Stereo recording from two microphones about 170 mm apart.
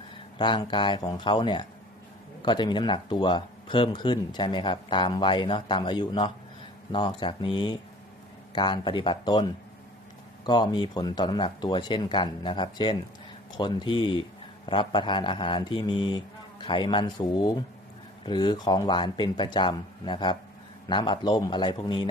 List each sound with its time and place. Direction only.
0.4 s speech: 30° left (ahead or behind)